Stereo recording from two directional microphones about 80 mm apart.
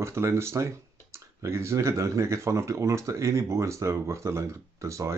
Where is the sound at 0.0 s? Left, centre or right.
Right.